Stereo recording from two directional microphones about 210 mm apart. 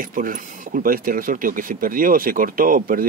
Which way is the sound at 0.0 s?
40° right (ahead or behind).